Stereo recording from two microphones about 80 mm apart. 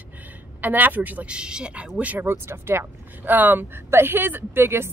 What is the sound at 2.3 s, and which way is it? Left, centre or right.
Speech, right.